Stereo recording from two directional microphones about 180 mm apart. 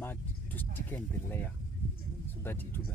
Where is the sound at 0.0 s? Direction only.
10° left (ahead or behind).